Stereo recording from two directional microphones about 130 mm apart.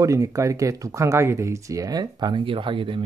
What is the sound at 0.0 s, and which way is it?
Speech, 25° right (ahead or behind).